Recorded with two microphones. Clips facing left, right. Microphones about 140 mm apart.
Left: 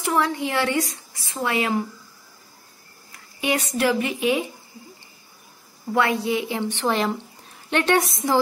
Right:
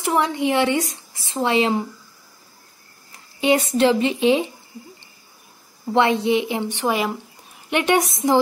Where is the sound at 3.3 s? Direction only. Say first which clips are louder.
Right 6 dB; 25° right (ahead or behind).